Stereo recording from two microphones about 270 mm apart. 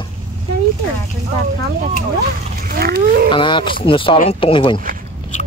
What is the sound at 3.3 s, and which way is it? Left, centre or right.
Speech, centre.